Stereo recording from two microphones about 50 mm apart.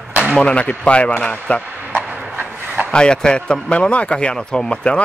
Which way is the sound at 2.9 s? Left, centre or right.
Centre.